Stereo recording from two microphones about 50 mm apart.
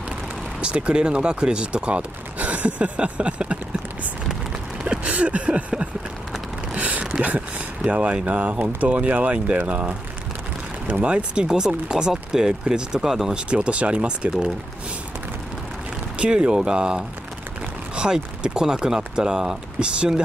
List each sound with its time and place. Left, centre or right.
0.6 s speech: right
4.3 s run: centre
5.0 s speech: right
6.7 s a sound: right
7.0 s speech: right
13.3 s speech: centre
16.2 s speech: right